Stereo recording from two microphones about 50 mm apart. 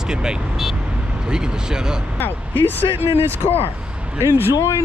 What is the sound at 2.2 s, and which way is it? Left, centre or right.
Speech, left.